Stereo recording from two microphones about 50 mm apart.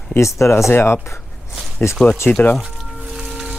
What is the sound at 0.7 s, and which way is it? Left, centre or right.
Speech, left.